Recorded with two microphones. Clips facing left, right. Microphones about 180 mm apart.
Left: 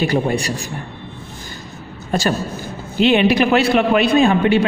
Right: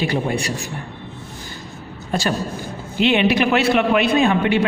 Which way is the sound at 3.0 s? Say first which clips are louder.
Left 3 dB; 40° left (ahead or behind).